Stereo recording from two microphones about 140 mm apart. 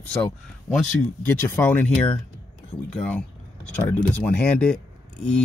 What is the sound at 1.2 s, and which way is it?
Speech, 15° left (ahead or behind).